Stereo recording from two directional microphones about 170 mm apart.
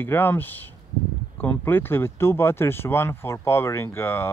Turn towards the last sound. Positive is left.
turn(degrees=15)  # may be behind; listen again after turning